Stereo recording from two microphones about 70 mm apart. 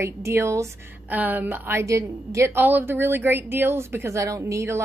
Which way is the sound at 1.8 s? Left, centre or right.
Right.